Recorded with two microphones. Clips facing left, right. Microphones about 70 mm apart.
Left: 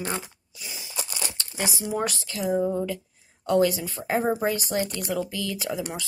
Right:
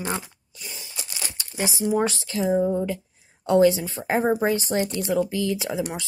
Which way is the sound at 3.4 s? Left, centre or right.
Right.